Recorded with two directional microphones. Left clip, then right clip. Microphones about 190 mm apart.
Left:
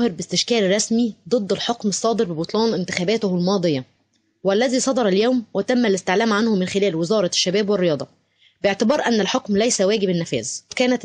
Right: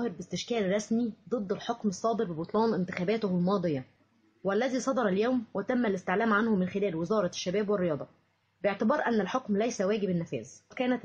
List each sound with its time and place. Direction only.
0.0 s a woman's voice: 35° left (ahead or behind)